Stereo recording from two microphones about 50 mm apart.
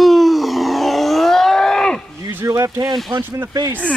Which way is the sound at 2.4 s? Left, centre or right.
Right.